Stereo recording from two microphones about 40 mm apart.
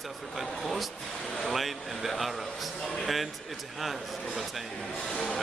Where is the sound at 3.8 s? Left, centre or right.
Centre.